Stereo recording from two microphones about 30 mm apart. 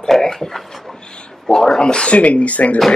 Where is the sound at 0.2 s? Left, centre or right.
Centre.